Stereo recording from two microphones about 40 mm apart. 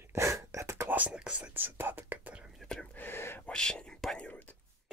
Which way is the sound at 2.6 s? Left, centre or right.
Centre.